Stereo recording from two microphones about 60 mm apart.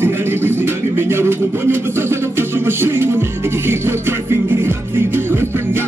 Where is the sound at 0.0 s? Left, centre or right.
Right.